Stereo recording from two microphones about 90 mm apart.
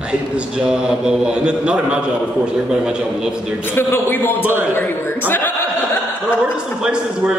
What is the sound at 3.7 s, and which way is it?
Speech, 25° left (ahead or behind).